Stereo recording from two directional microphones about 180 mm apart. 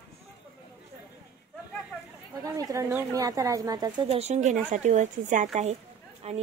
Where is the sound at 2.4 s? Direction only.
20° right (ahead or behind).